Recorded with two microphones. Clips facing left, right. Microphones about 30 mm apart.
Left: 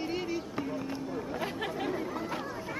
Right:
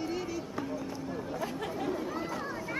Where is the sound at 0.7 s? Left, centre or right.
Left.